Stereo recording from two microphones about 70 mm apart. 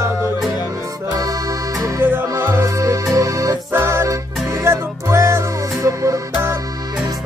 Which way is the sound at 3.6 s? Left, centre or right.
Right.